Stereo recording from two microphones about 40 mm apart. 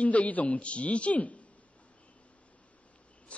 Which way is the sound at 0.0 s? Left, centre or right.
Left.